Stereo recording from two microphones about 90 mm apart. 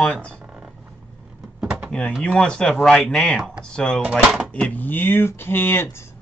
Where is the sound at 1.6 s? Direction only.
10° right (ahead or behind).